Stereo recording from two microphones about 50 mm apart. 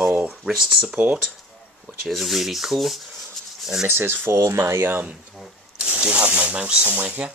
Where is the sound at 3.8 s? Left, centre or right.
Right.